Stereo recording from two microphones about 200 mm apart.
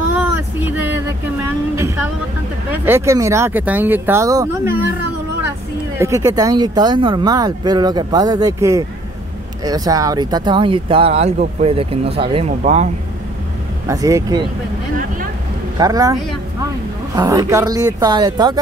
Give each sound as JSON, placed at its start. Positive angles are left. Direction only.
{"t": 2.8, "sound": "speech", "side_deg": -15}
{"t": 5.9, "sound": "speech", "side_deg": -15}
{"t": 13.8, "sound": "speech", "side_deg": -15}
{"t": 15.8, "sound": "speech", "side_deg": -15}